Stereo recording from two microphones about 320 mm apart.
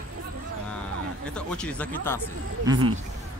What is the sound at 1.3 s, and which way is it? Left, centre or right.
Speech, centre.